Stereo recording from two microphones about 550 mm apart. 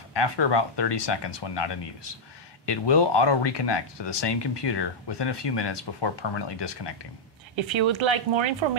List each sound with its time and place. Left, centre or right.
0.1 s speech: left
7.5 s speech: right